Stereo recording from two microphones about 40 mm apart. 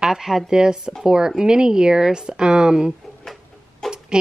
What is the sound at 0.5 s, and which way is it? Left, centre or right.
Speech, centre.